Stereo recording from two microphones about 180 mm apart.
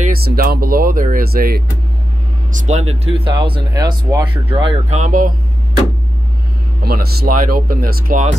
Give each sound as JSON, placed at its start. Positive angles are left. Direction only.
{"t": 0.0, "sound": "speech", "side_deg": -55}
{"t": 2.5, "sound": "speech", "side_deg": -40}
{"t": 6.8, "sound": "speech", "side_deg": -60}